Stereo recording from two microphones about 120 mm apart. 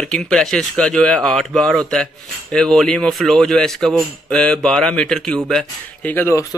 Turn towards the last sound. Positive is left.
turn(degrees=20)  # may be behind; listen again after turning